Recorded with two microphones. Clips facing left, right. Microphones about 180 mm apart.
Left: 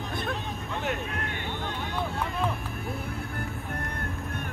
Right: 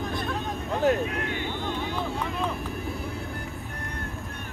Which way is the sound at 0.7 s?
40° right (ahead or behind).